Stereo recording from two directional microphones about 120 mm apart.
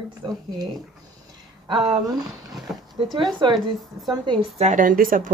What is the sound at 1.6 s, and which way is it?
Speech, 40° right (ahead or behind).